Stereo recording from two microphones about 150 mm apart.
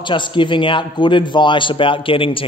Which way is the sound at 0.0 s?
30° left (ahead or behind).